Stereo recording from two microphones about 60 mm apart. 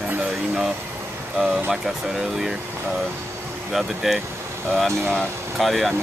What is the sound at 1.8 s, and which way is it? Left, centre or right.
Speech, centre.